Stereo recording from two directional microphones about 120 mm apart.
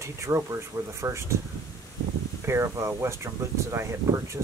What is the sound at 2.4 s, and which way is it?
Speech, 20° right (ahead or behind).